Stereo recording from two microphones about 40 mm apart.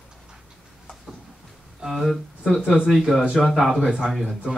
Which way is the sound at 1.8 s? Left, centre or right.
Right.